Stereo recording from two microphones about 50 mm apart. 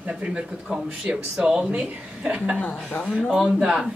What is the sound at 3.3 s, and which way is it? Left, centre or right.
Speech, centre.